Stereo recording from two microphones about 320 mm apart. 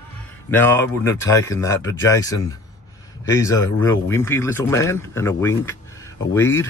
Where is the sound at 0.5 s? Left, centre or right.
Centre.